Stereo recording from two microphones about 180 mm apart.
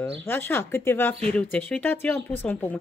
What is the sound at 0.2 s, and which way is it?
Speech, 10° left (ahead or behind).